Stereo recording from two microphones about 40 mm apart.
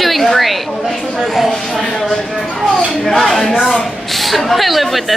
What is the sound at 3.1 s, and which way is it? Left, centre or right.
Speech, centre.